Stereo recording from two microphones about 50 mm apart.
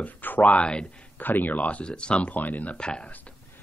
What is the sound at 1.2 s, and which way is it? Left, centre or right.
Speech, left.